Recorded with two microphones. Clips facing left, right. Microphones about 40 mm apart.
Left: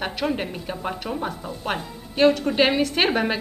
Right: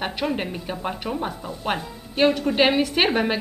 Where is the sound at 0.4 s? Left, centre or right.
Centre.